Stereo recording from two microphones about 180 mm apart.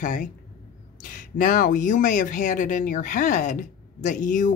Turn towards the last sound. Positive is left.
turn(degrees=45)  # may be behind; listen again after turning